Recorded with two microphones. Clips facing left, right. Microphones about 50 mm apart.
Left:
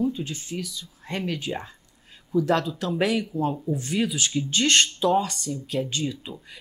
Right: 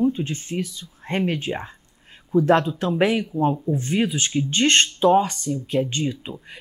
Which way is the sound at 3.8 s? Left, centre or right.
Right.